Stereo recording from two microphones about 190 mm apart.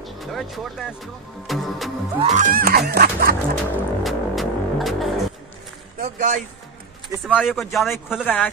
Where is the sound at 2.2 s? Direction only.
40° right (ahead or behind).